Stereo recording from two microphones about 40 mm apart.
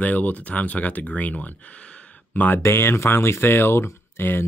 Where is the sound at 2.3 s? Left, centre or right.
Left.